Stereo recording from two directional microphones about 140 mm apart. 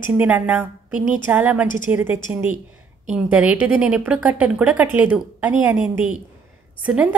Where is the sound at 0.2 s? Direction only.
10° right (ahead or behind).